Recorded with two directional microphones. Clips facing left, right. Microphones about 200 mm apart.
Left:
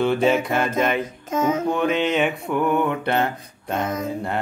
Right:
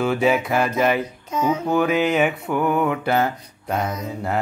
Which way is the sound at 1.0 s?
45° left (ahead or behind).